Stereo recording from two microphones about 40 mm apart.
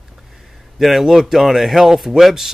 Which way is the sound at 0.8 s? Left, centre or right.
Centre.